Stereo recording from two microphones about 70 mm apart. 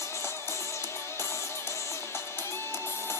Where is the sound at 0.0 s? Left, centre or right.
Left.